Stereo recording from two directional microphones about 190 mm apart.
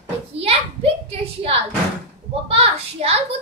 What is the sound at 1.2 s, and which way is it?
A woman's voice, 30° right (ahead or behind).